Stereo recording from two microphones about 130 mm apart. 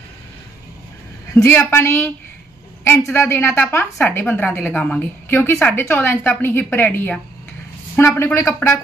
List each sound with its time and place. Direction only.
1.3 s a woman's voice: 20° left (ahead or behind)